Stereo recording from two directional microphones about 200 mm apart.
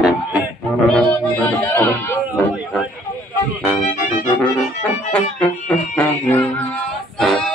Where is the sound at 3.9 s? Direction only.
40° left (ahead or behind).